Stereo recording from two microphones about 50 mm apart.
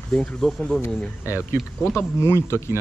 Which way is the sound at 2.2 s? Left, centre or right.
Left.